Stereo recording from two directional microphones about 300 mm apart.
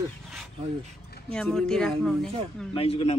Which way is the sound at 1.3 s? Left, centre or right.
Centre.